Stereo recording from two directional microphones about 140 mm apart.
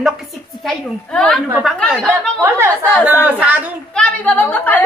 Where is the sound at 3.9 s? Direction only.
10° left (ahead or behind).